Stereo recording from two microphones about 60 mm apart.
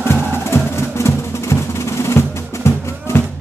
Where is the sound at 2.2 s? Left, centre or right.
Left.